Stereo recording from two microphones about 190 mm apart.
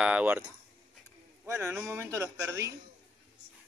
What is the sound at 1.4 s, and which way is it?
A man's voice, 10° right (ahead or behind).